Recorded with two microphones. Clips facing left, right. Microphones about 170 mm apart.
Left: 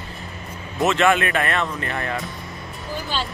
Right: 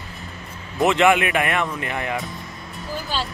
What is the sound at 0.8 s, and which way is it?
Speech, 15° right (ahead or behind).